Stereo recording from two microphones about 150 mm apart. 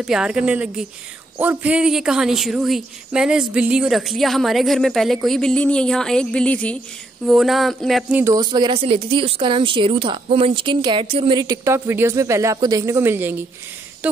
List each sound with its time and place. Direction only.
0.0 s a woman's voice: 5° right (ahead or behind)
8.2 s speech: 25° right (ahead or behind)